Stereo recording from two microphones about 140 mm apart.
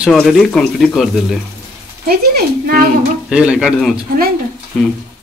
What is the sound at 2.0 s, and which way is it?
Speech, 90° right.